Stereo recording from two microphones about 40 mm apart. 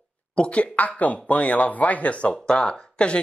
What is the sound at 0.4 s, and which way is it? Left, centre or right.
Speech, left.